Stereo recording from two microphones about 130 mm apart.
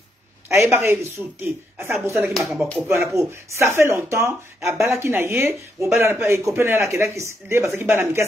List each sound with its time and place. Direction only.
0.5 s speech: 20° right (ahead or behind)
2.3 s speech: centre (ahead or behind)
3.0 s speech: 20° right (ahead or behind)